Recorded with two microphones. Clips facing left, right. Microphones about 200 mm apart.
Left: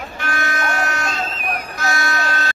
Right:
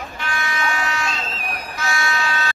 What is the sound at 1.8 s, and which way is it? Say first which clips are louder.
Music: even; 40° left (ahead or behind).